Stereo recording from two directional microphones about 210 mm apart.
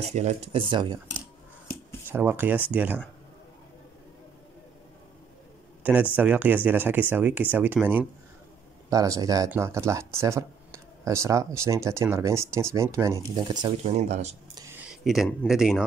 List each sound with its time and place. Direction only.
0.0 s speech: 30° right (ahead or behind)
2.0 s speech: 10° right (ahead or behind)
6.1 s speech: 10° right (ahead or behind); by 14.3 s 30° right (ahead or behind)
14.8 s speech: 5° right (ahead or behind)